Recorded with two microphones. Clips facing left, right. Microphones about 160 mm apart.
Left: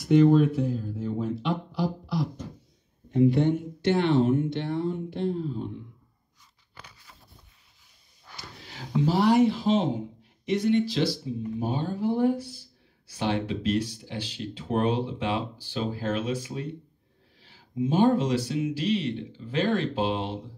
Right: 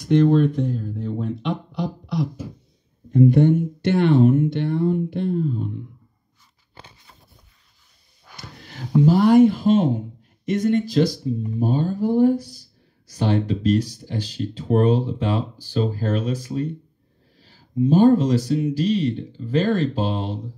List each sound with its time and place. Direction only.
0.0 s speech: 5° left (ahead or behind)
3.2 s speech: 45° right (ahead or behind)
6.7 s a sound: 25° right (ahead or behind)
8.4 s a sound: 50° right (ahead or behind)
9.0 s speech: 50° right (ahead or behind)
11.3 s speech: 5° left (ahead or behind)
11.6 s speech: 40° right (ahead or behind)
17.4 s a sound: 40° right (ahead or behind)
17.8 s speech: 40° right (ahead or behind)